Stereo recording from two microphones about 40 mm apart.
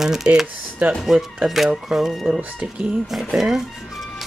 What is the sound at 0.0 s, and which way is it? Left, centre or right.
Speech, centre.